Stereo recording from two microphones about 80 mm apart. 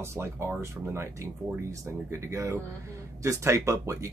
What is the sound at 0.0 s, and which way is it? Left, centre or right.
Speech, right.